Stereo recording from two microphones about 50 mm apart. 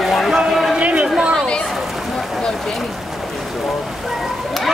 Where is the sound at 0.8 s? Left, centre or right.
Right.